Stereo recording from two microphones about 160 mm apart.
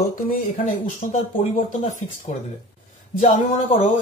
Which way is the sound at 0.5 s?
55° left (ahead or behind).